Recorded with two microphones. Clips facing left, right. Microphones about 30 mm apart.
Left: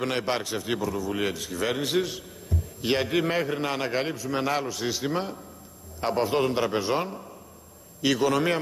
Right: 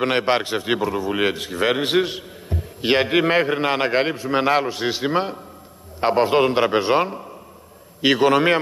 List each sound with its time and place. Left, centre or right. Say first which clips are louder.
0.0 s a man's voice: right 8 dB; right